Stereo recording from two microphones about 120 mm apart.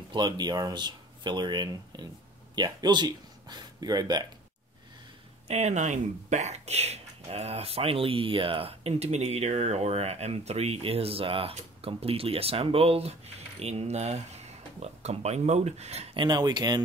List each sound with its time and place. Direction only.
0.1 s speech: 35° right (ahead or behind)
5.5 s speech: 70° right (ahead or behind)
16.2 s speech: 35° right (ahead or behind)